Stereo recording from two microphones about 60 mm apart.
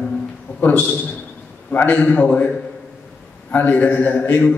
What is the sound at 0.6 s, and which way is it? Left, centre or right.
A man's voice, left.